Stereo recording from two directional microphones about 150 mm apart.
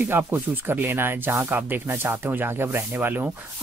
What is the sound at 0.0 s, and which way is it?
Speech, 15° right (ahead or behind).